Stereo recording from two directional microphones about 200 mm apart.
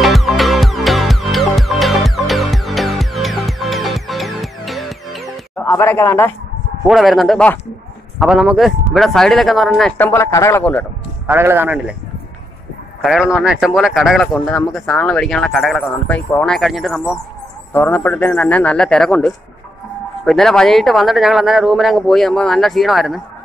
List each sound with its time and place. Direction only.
0.0 s music: centre (ahead or behind)
6.9 s speech: centre (ahead or behind)
11.2 s speech: 10° right (ahead or behind)
13.0 s a man's voice: centre (ahead or behind)